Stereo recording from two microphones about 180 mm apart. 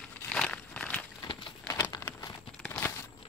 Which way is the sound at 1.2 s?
25° left (ahead or behind).